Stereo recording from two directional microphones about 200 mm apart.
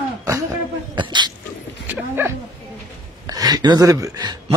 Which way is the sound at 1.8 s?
10° right (ahead or behind).